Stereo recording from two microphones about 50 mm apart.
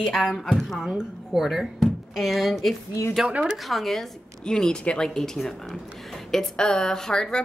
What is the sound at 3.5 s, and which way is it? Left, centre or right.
A woman's voice, centre.